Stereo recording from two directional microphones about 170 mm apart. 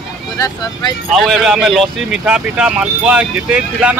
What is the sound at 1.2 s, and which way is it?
Speech, centre (ahead or behind).